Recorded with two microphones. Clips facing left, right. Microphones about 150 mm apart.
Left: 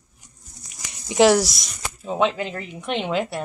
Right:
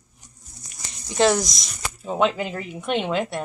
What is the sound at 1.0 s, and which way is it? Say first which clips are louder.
Speech: left 4 dB; 10° left (ahead or behind).